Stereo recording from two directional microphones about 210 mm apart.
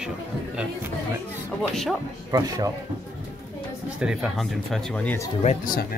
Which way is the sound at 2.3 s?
15° right (ahead or behind).